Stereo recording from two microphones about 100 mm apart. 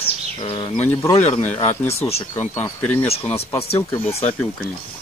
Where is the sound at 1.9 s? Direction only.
90° left.